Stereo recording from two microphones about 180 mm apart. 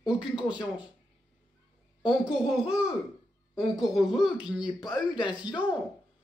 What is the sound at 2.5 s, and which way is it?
Speech, 5° right (ahead or behind).